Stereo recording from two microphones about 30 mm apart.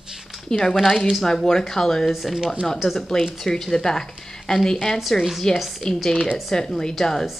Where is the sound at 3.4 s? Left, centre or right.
Centre.